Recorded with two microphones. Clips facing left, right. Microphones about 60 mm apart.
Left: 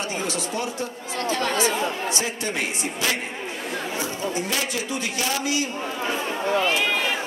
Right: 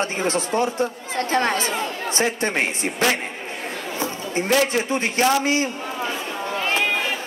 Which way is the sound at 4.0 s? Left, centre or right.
Right.